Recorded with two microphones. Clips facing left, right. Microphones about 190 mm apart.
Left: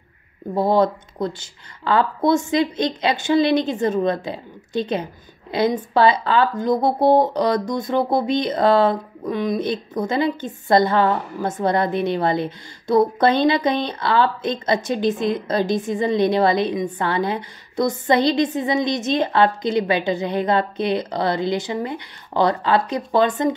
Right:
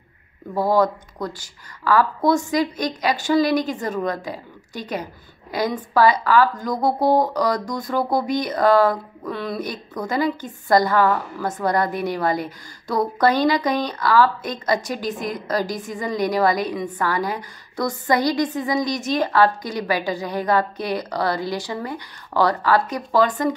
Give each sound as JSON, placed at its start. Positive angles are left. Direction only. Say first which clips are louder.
{"t": 0.6, "sound": "speech", "louder": "left 1 dB", "side_deg": 25}